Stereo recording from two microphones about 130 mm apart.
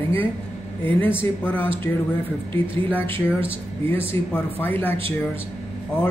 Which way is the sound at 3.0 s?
45° right (ahead or behind).